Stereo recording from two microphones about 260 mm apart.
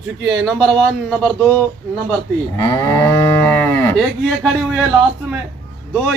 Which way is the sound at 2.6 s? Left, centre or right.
Centre.